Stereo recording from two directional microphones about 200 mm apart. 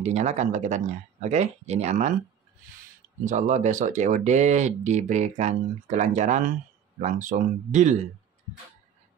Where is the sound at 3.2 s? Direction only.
40° right (ahead or behind).